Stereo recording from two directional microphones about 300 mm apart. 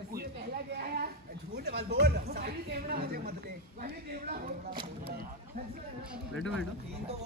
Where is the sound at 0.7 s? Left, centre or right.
Right.